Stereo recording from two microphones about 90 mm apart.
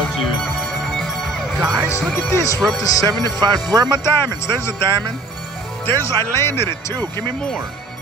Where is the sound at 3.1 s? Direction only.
45° right (ahead or behind).